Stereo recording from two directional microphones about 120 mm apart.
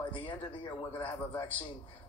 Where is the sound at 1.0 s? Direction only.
40° left (ahead or behind).